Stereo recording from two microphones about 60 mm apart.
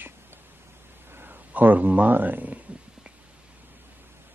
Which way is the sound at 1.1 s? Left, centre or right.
Right.